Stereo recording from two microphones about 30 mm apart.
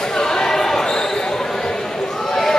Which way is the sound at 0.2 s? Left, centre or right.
Centre.